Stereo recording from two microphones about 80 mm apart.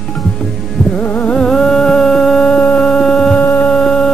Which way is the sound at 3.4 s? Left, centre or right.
Left.